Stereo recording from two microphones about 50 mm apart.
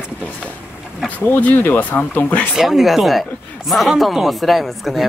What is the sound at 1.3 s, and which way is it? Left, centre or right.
Speech, left.